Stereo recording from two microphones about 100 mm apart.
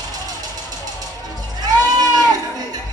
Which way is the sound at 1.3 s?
40° right (ahead or behind).